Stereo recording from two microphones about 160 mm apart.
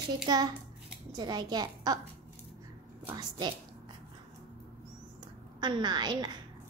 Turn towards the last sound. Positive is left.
turn(degrees=-25)  # may be behind; listen again after turning